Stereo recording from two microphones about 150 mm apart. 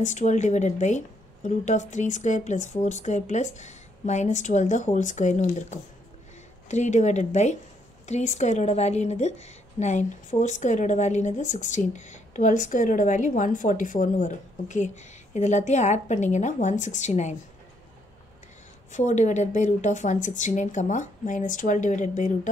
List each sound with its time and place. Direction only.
0.0 s a woman's voice: 55° left (ahead or behind)
18.9 s speech: 55° left (ahead or behind)